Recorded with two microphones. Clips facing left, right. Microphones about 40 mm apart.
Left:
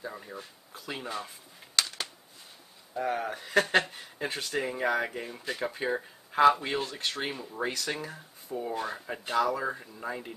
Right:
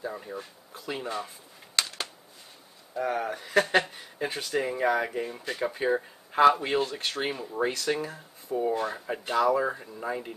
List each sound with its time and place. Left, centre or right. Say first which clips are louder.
0.0 s speech: right 4 dB; centre
1.8 s a sound: right 1 dB; right
2.9 s speech: right 2 dB; centre